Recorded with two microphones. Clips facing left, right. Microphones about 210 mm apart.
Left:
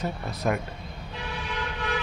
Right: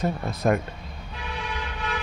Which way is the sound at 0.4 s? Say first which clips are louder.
Right 4 dB; 45° right (ahead or behind).